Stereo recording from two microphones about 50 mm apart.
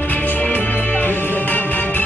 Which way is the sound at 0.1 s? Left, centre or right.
Left.